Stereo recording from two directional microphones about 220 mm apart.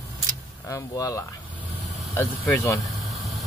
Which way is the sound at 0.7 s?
15° left (ahead or behind).